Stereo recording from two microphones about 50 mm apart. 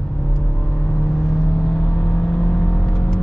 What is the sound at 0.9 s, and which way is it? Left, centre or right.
Vehicle, centre.